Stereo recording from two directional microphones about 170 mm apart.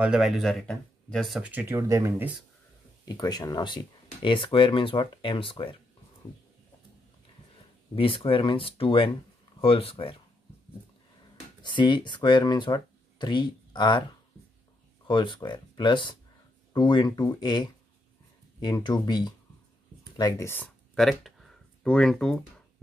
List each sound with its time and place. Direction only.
0.0 s speech: 5° right (ahead or behind)
3.1 s speech: 25° left (ahead or behind)
7.9 s speech: 30° left (ahead or behind)
11.6 s speech: 30° left (ahead or behind)
15.0 s speech: 30° left (ahead or behind)
20.9 s a sound: centre (ahead or behind)